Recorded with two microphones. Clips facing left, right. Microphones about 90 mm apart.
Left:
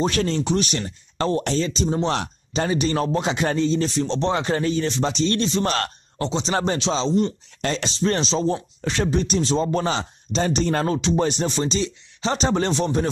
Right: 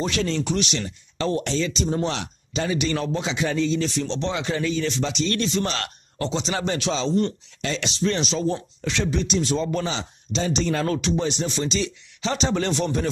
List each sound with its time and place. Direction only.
0.0 s a man's voice: 40° left (ahead or behind)
2.0 s a man's voice: 40° left (ahead or behind)
6.1 s a man's voice: 30° left (ahead or behind)
8.8 s speech: 40° left (ahead or behind)
10.9 s speech: 30° left (ahead or behind)
11.1 s a man's voice: 45° left (ahead or behind)